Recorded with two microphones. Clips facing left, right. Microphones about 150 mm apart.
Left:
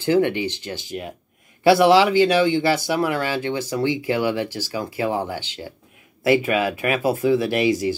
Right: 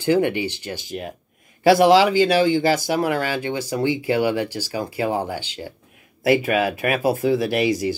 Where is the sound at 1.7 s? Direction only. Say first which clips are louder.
Even; 40° right (ahead or behind).